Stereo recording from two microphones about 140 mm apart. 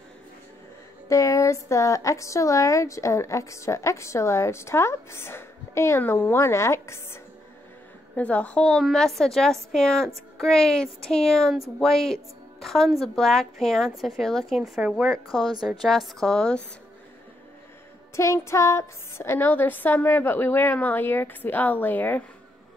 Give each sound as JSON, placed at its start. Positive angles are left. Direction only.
{"t": 1.0, "sound": "a woman's voice", "side_deg": 25}
{"t": 8.2, "sound": "a woman's voice", "side_deg": 10}
{"t": 18.1, "sound": "a woman's voice", "side_deg": 20}